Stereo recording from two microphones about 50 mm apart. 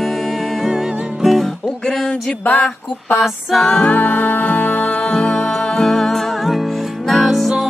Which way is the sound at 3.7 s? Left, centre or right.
Left.